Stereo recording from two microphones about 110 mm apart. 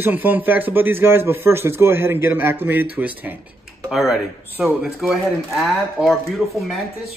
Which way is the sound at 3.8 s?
5° right (ahead or behind).